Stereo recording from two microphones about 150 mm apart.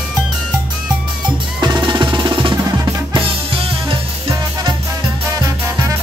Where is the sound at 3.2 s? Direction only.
40° right (ahead or behind).